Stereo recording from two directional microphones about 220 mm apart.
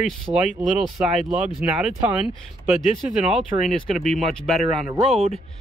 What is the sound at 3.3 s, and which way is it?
Speech, centre (ahead or behind).